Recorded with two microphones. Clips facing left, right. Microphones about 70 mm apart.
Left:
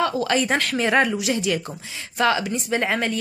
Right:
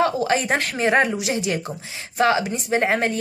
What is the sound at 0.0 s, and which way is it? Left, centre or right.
A woman's voice, right.